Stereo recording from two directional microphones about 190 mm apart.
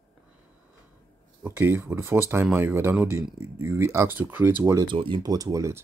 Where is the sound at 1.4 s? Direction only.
10° right (ahead or behind).